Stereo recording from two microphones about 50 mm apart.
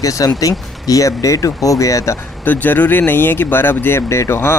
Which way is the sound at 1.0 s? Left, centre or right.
Left.